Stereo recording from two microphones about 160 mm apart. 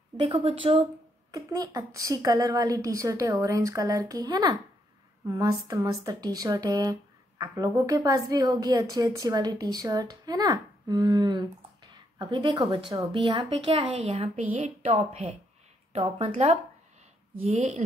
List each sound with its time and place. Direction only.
0.3 s a woman's voice: 35° right (ahead or behind)
1.3 s speech: 20° right (ahead or behind)
5.2 s a sound: 20° right (ahead or behind)
5.5 s a woman's voice: 20° right (ahead or behind); by 17.8 s 45° right (ahead or behind)